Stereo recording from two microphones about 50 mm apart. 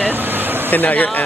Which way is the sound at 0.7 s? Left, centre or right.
Left.